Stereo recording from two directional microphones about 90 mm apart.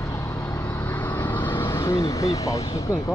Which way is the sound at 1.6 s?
35° left (ahead or behind).